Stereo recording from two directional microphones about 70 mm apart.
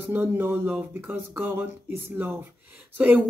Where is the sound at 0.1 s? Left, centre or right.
Right.